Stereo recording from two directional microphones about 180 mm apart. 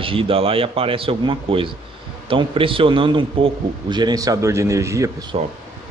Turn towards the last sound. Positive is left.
turn(degrees=-15)  # may be behind; listen again after turning